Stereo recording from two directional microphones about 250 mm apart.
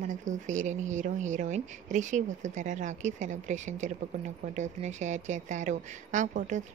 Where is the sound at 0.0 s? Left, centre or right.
Right.